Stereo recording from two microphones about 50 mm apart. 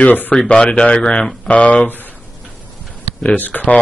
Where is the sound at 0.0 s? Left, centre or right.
Left.